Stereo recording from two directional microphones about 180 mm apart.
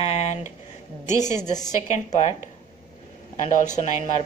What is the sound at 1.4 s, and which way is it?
Speech, 20° left (ahead or behind).